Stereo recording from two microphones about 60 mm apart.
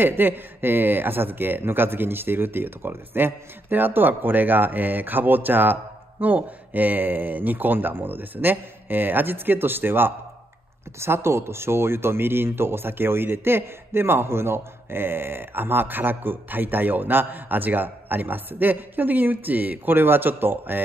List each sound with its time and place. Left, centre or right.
0.0 s speech: right